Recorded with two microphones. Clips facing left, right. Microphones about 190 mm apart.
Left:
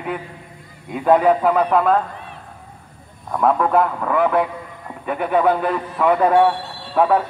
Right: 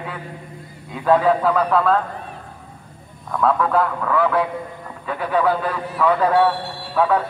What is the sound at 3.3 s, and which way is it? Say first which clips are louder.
A man's voice: left 2 dB; 20° left (ahead or behind).